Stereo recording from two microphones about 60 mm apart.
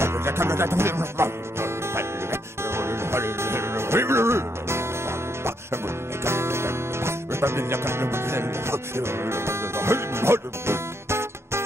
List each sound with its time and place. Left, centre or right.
0.0 s music: right
6.2 s music: right